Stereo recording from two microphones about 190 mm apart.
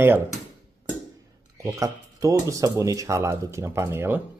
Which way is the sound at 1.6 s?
15° right (ahead or behind).